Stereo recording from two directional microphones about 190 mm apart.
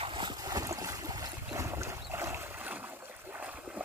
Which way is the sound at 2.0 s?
10° right (ahead or behind).